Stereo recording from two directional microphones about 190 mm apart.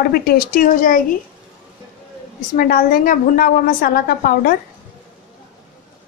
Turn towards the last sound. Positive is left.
turn(degrees=50)  # may be behind; listen again after turning